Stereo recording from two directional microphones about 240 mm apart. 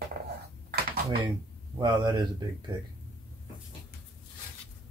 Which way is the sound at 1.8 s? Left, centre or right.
Centre.